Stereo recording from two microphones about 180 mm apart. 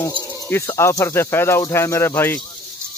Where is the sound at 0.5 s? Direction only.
15° left (ahead or behind).